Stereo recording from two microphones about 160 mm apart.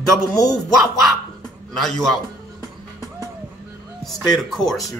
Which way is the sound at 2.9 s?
20° right (ahead or behind).